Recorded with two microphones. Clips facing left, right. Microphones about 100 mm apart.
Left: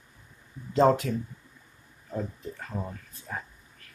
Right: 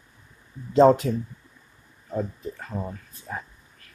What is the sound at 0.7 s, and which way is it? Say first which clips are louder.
Speech: right 5 dB; 25° right (ahead or behind).